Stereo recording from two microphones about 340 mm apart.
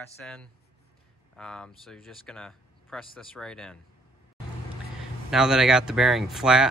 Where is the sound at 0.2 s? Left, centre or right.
Centre.